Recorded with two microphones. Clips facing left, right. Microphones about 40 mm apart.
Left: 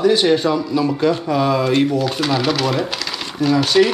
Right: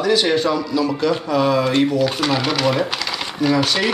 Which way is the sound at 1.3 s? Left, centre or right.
Centre.